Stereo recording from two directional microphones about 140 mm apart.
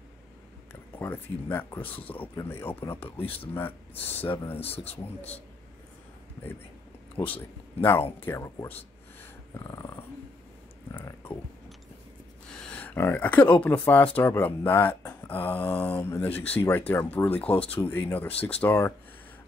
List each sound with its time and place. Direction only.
0.9 s speech: 15° left (ahead or behind)
1.8 s speech: 40° left (ahead or behind)
2.1 s speech: 15° left (ahead or behind)
3.0 s speech: 40° left (ahead or behind)
4.0 s speech: 15° left (ahead or behind)
7.2 s speech: 30° left (ahead or behind)
7.8 s speech: 15° left (ahead or behind)
9.5 s dog: 20° left (ahead or behind)
11.0 s a sound: 15° left (ahead or behind)
12.4 s speech: 5° left (ahead or behind)